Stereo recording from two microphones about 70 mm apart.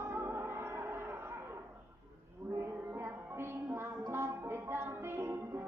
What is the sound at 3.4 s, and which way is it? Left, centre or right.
Music, right.